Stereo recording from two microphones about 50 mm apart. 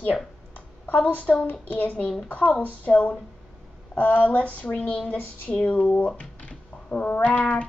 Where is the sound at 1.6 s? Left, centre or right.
Left.